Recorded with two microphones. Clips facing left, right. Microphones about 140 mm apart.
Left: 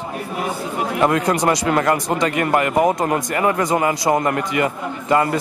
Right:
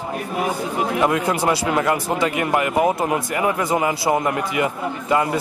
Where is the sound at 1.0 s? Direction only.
40° left (ahead or behind).